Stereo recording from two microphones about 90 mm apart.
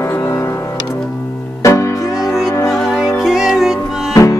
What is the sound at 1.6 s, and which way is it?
Music, 35° left (ahead or behind).